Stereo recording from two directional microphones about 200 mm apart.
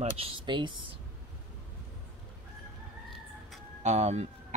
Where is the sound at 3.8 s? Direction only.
35° right (ahead or behind).